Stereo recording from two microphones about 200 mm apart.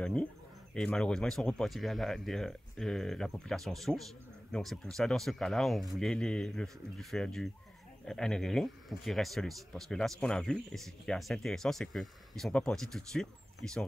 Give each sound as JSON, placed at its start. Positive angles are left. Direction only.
{"t": 0.0, "sound": "a man's voice", "side_deg": 5}